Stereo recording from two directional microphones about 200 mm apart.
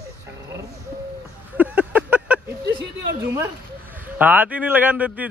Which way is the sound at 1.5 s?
10° right (ahead or behind).